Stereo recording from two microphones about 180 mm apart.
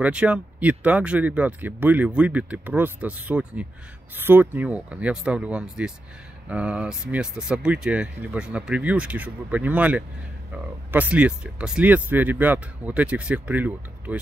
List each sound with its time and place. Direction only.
0.0 s speech: 5° right (ahead or behind)